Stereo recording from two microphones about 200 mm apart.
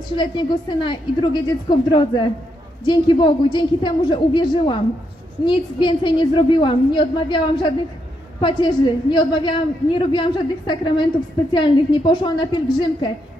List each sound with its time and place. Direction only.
0.1 s a woman's voice: 25° left (ahead or behind)